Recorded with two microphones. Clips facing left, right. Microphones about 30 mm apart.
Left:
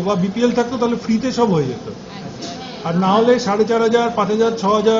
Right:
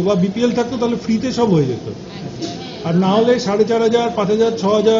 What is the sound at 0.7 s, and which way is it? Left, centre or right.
Speech, centre.